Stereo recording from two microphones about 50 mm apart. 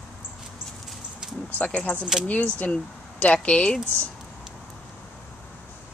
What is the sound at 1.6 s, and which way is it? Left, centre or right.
Speech, left.